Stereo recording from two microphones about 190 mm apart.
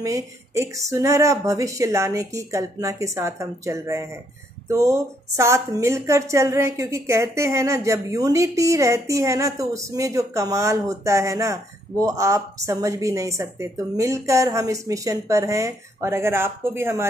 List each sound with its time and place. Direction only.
0.0 s a woman's voice: 15° right (ahead or behind)